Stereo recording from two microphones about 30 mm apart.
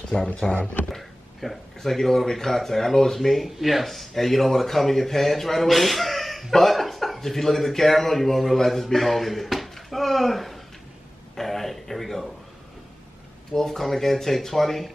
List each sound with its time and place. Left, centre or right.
0.1 s speech: left
1.4 s speech: centre
3.4 s speech: centre
3.8 s a man's voice: centre
11.3 s a sound: centre
13.5 s speech: centre